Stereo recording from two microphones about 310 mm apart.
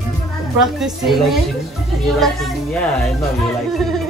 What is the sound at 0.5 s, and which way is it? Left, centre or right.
Speech, centre.